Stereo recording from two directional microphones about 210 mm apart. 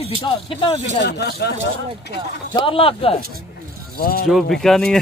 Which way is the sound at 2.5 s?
25° left (ahead or behind).